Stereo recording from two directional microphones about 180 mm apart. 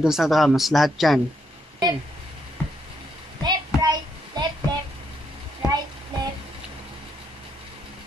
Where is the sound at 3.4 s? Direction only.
25° right (ahead or behind).